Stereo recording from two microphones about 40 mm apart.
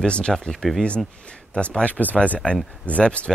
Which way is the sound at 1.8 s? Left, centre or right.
Left.